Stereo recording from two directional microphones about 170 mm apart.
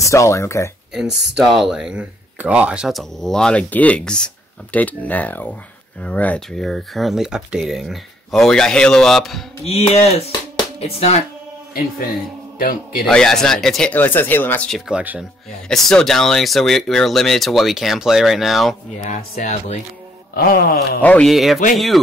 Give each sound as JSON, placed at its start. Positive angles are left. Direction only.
{"t": 0.0, "sound": "speech", "side_deg": 15}
{"t": 1.0, "sound": "speech", "side_deg": -90}
{"t": 1.3, "sound": "speech", "side_deg": 0}
{"t": 9.7, "sound": "a sound", "side_deg": 40}
{"t": 12.5, "sound": "a man's voice", "side_deg": 55}
{"t": 13.0, "sound": "speech", "side_deg": 5}
{"t": 14.9, "sound": "speech", "side_deg": -5}
{"t": 18.9, "sound": "speech", "side_deg": 45}
{"t": 20.3, "sound": "wail", "side_deg": 60}
{"t": 21.0, "sound": "speech", "side_deg": 5}